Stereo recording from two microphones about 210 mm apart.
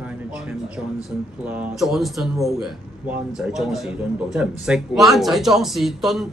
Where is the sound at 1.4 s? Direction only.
5° right (ahead or behind).